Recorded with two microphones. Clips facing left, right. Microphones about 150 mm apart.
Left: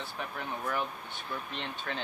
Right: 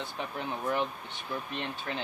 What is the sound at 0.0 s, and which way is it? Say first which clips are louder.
Speech: right 2 dB; 20° right (ahead or behind).